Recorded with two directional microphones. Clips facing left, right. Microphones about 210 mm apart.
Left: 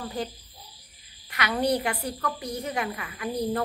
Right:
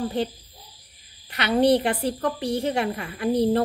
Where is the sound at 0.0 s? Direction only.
25° right (ahead or behind).